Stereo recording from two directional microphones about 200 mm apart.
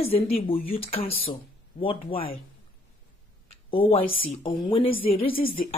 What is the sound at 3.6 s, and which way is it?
Speech, 25° left (ahead or behind).